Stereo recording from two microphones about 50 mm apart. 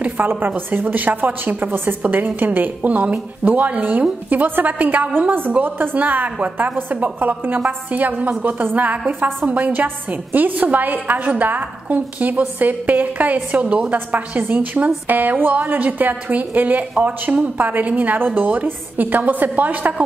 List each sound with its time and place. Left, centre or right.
0.0 s a woman's voice: right